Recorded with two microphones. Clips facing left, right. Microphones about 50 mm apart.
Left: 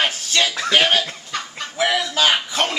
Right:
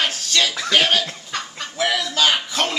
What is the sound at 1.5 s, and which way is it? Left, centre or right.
Chicken, centre.